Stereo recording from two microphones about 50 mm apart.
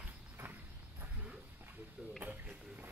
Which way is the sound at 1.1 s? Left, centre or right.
Right.